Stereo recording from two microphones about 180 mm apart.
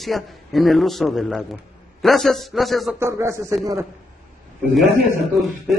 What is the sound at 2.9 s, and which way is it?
Speech, 15° right (ahead or behind).